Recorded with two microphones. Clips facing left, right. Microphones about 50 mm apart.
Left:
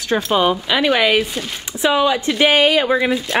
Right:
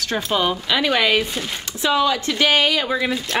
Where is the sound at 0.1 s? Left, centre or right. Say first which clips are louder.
Left 5 dB; centre.